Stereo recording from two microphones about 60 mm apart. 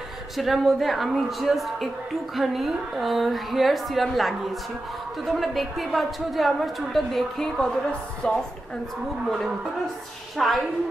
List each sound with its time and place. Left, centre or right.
0.4 s a woman's voice: centre
10.3 s a woman's voice: centre